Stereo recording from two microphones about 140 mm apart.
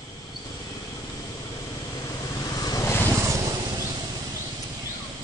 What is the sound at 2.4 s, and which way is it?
Vehicle, 30° left (ahead or behind).